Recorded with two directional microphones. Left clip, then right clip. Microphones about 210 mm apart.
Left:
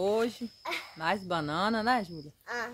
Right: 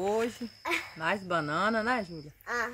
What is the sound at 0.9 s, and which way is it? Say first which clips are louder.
Speech: left 3 dB; 30° left (ahead or behind).